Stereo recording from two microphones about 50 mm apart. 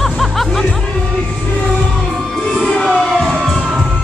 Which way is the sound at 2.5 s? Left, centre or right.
Centre.